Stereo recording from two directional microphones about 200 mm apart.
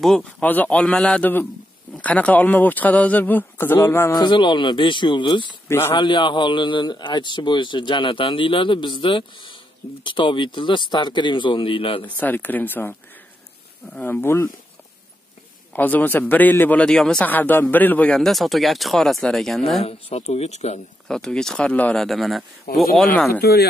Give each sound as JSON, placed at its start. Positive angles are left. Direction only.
{"t": 0.0, "sound": "a man's voice", "side_deg": 5}
{"t": 4.2, "sound": "a man's voice", "side_deg": 25}
{"t": 5.7, "sound": "a man's voice", "side_deg": 10}
{"t": 5.9, "sound": "a man's voice", "side_deg": 25}
{"t": 12.0, "sound": "a man's voice", "side_deg": 10}
{"t": 13.9, "sound": "a man's voice", "side_deg": 10}
{"t": 15.7, "sound": "a man's voice", "side_deg": 10}
{"t": 19.8, "sound": "speech", "side_deg": 30}
{"t": 21.1, "sound": "speech", "side_deg": 5}
{"t": 23.4, "sound": "speech", "side_deg": 50}